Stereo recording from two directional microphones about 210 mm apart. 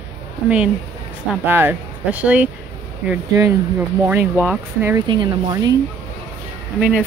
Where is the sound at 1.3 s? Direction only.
10° right (ahead or behind).